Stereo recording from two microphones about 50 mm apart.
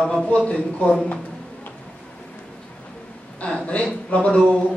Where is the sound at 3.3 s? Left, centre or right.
Left.